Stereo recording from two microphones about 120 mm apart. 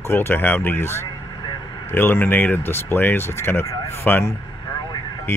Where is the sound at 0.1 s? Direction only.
15° left (ahead or behind).